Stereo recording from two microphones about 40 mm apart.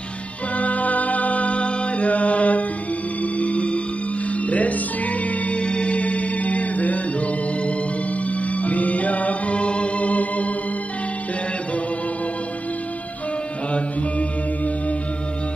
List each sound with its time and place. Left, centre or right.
0.6 s music: left
5.5 s music: left